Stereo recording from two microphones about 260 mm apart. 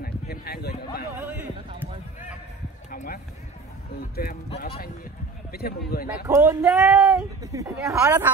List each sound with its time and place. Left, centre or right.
0.0 s speech: left
1.2 s speech: centre
2.9 s a sound: left
4.1 s speech: left
6.0 s speech: centre
7.5 s speech: centre